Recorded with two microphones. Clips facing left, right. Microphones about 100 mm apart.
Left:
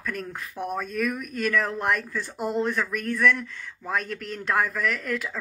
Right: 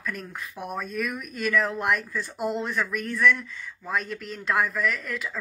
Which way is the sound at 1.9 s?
55° left (ahead or behind).